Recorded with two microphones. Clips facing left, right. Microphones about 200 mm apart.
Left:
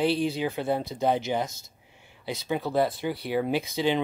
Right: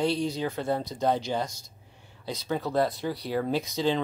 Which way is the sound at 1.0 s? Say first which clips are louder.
Left 1 dB; 20° left (ahead or behind).